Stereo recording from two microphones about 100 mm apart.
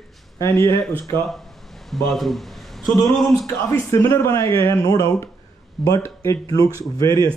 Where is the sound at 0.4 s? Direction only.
30° left (ahead or behind).